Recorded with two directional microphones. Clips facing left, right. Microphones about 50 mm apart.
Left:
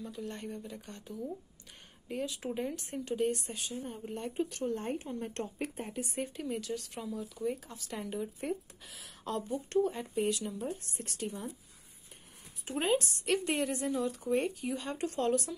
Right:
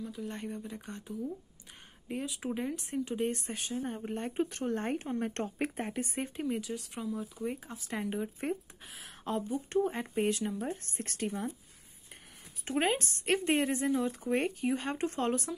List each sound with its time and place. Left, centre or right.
0.2 s speech: right
3.2 s speech: right
5.6 s speech: right
5.9 s speech: right
6.2 s speech: right
6.6 s speech: centre
7.2 s speech: right
8.8 s speech: right
9.8 s speech: right
12.6 s speech: right
14.3 s speech: right